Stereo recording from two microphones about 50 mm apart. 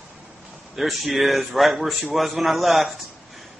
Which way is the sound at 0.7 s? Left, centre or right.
Centre.